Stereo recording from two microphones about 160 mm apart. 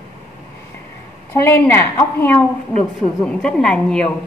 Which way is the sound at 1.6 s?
15° left (ahead or behind).